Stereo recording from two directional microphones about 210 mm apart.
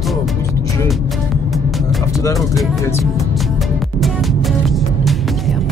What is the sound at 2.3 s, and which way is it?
Speech, centre (ahead or behind).